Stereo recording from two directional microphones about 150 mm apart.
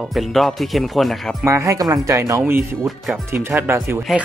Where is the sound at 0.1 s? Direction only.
Centre (ahead or behind).